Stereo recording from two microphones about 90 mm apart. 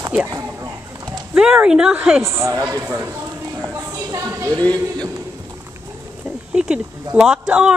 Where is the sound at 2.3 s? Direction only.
30° right (ahead or behind).